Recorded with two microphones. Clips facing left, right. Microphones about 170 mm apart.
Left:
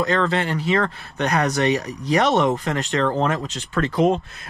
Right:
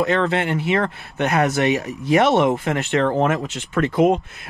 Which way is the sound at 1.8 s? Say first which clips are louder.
Right 3 dB; 40° left (ahead or behind).